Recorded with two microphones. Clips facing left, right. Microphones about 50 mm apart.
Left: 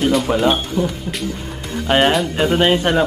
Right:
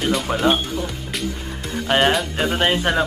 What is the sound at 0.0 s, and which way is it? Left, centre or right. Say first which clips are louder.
Speech: left 4 dB; centre.